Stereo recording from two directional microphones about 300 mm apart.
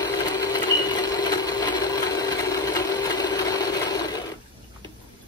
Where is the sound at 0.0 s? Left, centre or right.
Centre.